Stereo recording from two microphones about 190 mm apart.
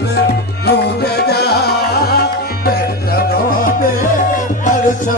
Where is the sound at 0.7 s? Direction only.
60° left (ahead or behind).